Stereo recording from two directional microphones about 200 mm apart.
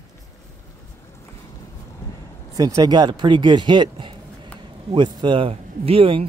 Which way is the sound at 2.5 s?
20° right (ahead or behind).